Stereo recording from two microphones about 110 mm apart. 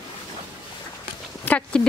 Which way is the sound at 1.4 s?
10° left (ahead or behind).